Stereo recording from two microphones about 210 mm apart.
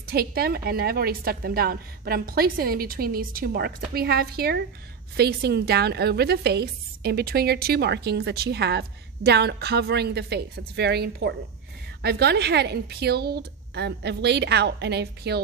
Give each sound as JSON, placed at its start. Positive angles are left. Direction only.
{"t": 0.0, "sound": "a woman's voice", "side_deg": -45}